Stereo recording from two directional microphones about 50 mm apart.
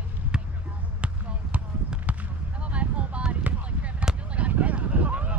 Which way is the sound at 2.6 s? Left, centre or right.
Right.